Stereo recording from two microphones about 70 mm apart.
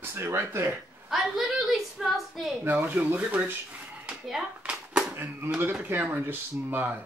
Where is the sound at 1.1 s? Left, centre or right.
Centre.